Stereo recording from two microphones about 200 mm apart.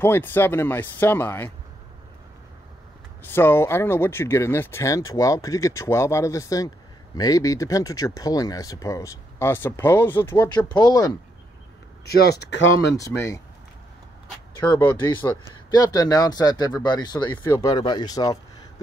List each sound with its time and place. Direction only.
0.0 s speech: 10° left (ahead or behind)
3.3 s speech: 10° left (ahead or behind)
12.1 s speech: 55° left (ahead or behind)
12.9 s speech: 15° left (ahead or behind)
14.7 s speech: 20° left (ahead or behind)